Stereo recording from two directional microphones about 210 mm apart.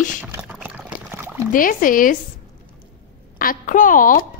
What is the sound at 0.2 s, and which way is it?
Pour, 10° right (ahead or behind).